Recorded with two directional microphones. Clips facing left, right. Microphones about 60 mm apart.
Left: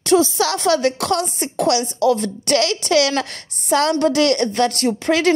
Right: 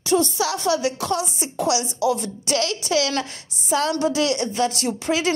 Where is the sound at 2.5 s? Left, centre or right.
Left.